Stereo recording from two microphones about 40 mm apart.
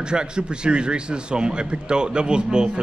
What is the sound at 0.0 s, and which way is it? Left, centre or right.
A man's voice, right.